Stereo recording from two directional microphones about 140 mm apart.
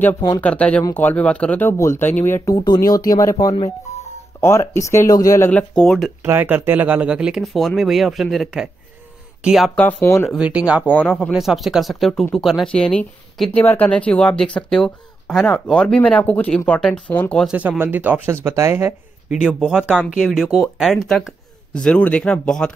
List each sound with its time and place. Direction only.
0.4 s speech: 10° left (ahead or behind)
2.5 s speech: 30° left (ahead or behind)
5.5 s speech: 10° left (ahead or behind)
6.2 s speech: 15° right (ahead or behind)
9.8 s speech: 15° left (ahead or behind)
10.3 s speech: 5° right (ahead or behind)
10.9 s speech: 10° left (ahead or behind)
11.3 s speech: centre (ahead or behind)
17.5 s speech: 10° right (ahead or behind); by 22.8 s 5° left (ahead or behind)